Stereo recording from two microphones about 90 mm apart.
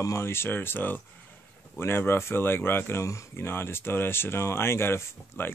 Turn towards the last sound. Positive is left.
turn(degrees=25)  # may be behind; listen again after turning